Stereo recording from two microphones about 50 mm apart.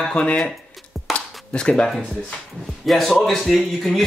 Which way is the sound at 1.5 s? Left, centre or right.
Centre.